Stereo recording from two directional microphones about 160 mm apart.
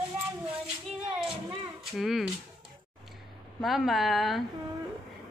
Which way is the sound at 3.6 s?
Centre (ahead or behind).